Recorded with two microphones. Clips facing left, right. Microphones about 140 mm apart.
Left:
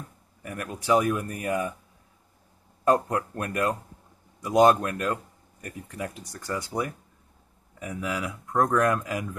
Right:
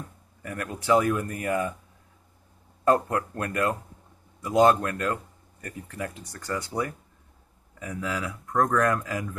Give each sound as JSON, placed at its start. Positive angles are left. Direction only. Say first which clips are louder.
{"t": 0.4, "sound": "speech", "louder": "right 1 dB", "side_deg": 15}
{"t": 2.9, "sound": "speech", "louder": "even", "side_deg": 15}